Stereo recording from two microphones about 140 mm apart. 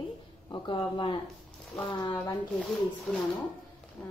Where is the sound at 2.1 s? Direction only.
10° left (ahead or behind).